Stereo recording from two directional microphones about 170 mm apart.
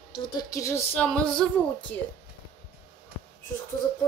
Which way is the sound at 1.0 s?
5° left (ahead or behind).